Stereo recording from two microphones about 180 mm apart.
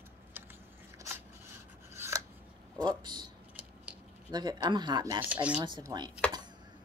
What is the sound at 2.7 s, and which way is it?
Speech, 25° right (ahead or behind).